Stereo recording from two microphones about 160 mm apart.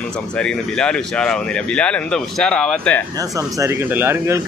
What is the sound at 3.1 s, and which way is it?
Speech, 20° right (ahead or behind).